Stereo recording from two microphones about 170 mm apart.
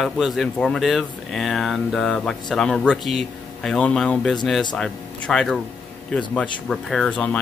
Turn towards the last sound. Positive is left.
turn(degrees=5)  # may be behind; listen again after turning